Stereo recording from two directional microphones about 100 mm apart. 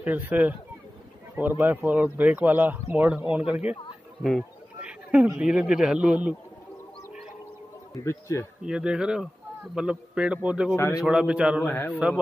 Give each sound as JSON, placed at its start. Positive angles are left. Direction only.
{"t": 0.0, "sound": "speech", "side_deg": -20}
{"t": 4.2, "sound": "speech", "side_deg": 0}
{"t": 4.8, "sound": "a sound", "side_deg": -15}
{"t": 5.4, "sound": "speech", "side_deg": -10}
{"t": 7.9, "sound": "a man's voice", "side_deg": 30}
{"t": 8.6, "sound": "speech", "side_deg": -10}
{"t": 11.6, "sound": "a man's voice", "side_deg": 20}